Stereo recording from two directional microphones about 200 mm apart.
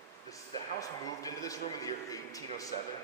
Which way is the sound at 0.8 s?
15° left (ahead or behind).